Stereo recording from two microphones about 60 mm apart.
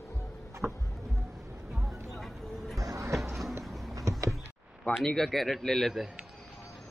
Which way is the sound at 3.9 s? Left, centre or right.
Right.